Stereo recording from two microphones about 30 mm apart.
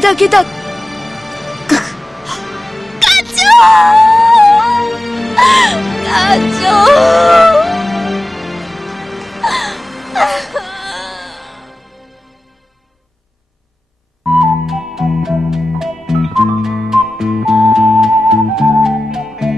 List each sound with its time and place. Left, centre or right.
0.0 s music: centre
14.2 s music: centre